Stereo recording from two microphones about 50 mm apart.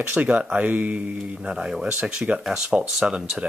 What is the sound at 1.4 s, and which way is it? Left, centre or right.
Speech, centre.